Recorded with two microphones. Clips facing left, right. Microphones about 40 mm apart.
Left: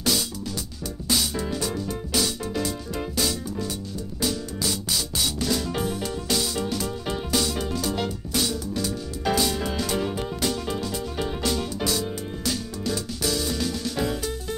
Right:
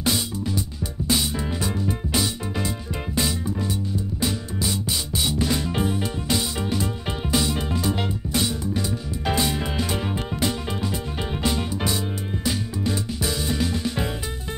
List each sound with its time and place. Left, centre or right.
1.0 s music: right